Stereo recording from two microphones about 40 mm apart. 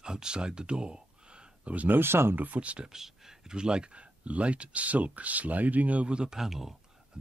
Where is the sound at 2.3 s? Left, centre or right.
Right.